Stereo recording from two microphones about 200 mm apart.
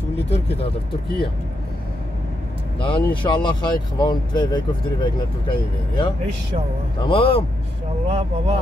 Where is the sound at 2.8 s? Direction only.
25° left (ahead or behind).